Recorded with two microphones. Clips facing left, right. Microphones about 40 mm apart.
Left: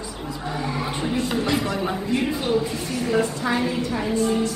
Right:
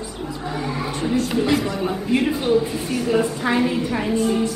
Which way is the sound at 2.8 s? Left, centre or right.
Centre.